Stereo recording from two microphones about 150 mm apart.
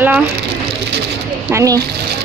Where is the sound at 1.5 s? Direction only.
20° right (ahead or behind).